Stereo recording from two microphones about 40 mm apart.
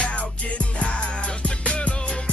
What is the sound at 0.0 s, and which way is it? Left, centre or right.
Music, left.